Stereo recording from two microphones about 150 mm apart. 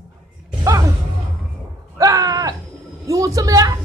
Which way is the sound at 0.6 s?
20° right (ahead or behind).